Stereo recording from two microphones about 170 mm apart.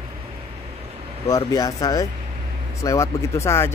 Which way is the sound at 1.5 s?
20° left (ahead or behind).